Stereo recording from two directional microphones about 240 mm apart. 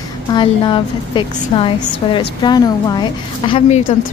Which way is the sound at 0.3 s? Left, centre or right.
Centre.